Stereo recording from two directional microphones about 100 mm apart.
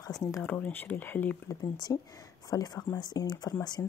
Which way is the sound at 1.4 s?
40° left (ahead or behind).